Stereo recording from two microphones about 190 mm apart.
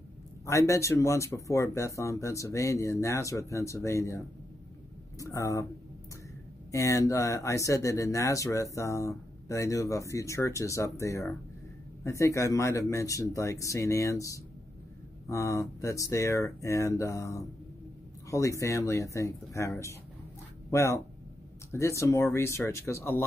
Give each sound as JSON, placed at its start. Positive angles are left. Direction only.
{"t": 0.5, "sound": "speech", "side_deg": 15}
{"t": 5.2, "sound": "speech", "side_deg": 15}
{"t": 6.7, "sound": "speech", "side_deg": 15}